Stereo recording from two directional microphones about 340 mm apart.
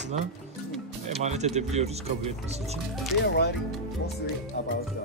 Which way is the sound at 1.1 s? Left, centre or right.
Centre.